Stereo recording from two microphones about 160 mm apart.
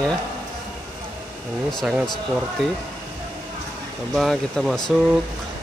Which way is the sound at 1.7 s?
Centre (ahead or behind).